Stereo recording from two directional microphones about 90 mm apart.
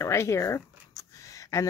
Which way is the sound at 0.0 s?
30° left (ahead or behind).